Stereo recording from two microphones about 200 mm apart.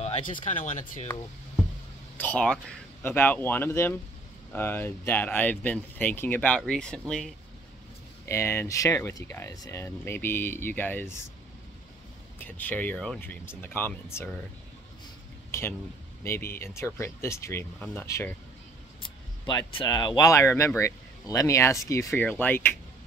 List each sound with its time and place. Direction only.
0.0 s speech: 35° left (ahead or behind)
2.1 s speech: 5° left (ahead or behind)
12.4 s speech: 10° left (ahead or behind)
15.5 s a sound: 15° left (ahead or behind)
16.3 s speech: 10° left (ahead or behind)
19.0 s speech: 25° left (ahead or behind)